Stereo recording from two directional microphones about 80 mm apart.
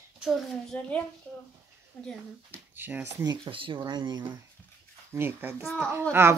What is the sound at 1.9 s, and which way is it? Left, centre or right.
Speech, centre.